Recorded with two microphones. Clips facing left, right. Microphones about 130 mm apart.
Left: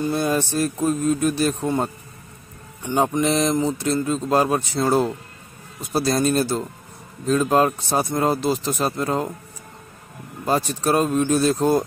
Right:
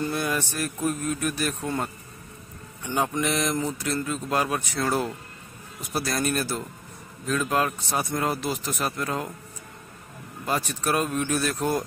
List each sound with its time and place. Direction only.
0.0 s a man's voice: 30° left (ahead or behind)
2.9 s a man's voice: 30° left (ahead or behind)
10.4 s a man's voice: 30° left (ahead or behind)